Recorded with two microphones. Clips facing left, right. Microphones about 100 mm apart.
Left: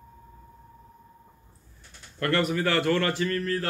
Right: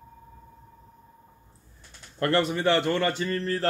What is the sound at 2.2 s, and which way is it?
A man's voice, 30° right (ahead or behind).